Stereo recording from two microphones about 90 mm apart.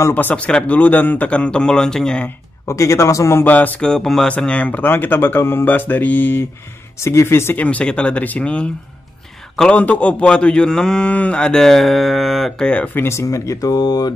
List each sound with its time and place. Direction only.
0.1 s a man's voice: 20° left (ahead or behind)
2.2 s speech: 30° left (ahead or behind)
3.8 s speech: 5° left (ahead or behind); by 7.5 s 30° left (ahead or behind)
7.5 s a man's voice: 15° left (ahead or behind); by 14.1 s 50° left (ahead or behind)